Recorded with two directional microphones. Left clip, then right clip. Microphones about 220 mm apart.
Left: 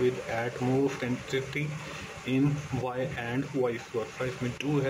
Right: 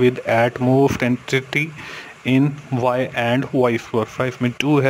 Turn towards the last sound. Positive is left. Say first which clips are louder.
# right 12 dB
turn(degrees=-50)  # may be behind; listen again after turning